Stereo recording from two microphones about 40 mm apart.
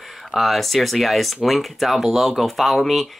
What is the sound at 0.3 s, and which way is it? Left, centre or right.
Speech, centre.